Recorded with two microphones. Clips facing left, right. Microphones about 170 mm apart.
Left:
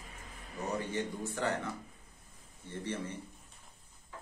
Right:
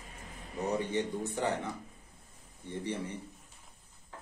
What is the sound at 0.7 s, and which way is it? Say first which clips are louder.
Speech: right 3 dB; 15° right (ahead or behind).